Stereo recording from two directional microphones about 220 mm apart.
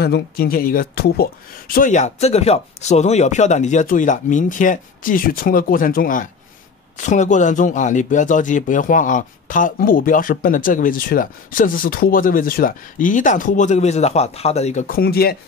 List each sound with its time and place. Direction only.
0.0 s a man's voice: 45° left (ahead or behind)